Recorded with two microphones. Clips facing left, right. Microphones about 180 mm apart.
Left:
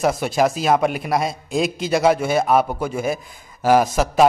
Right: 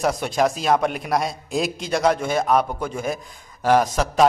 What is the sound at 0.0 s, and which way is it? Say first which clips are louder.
A man's voice: left 2 dB; 5° left (ahead or behind).